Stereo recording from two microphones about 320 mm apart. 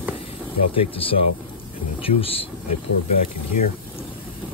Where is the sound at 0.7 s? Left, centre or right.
Centre.